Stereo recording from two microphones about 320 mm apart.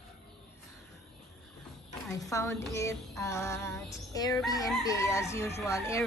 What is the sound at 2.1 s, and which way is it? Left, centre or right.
Speech, centre.